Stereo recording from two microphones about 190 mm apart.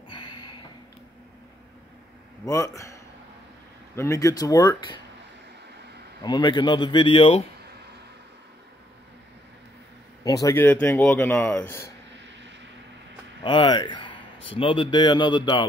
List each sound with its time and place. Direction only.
0.1 s a sound: 25° left (ahead or behind)
2.4 s speech: 15° left (ahead or behind)
6.2 s a man's voice: 25° left (ahead or behind)
10.2 s speech: 20° left (ahead or behind)
13.4 s a man's voice: 25° left (ahead or behind)